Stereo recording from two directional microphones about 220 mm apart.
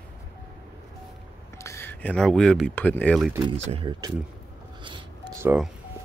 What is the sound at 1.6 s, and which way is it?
Speech, 10° left (ahead or behind).